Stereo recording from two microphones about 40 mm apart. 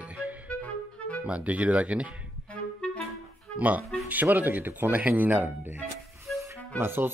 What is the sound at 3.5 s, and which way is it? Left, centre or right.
Speech, right.